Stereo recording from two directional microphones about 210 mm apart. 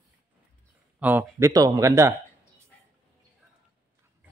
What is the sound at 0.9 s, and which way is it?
A man's voice, 10° right (ahead or behind).